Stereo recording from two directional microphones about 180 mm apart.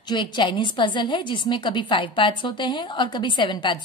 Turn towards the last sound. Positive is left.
turn(degrees=25)  # may be behind; listen again after turning